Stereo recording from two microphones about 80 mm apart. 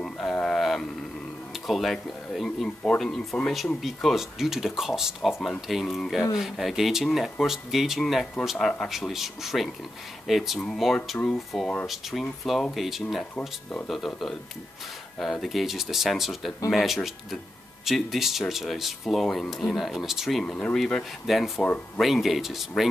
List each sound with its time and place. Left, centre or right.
0.0 s a sound: centre
1.5 s speech: centre
21.6 s speech: centre
22.0 s speech: centre